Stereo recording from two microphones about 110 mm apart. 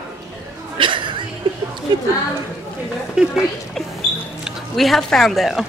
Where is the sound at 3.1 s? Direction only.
5° right (ahead or behind).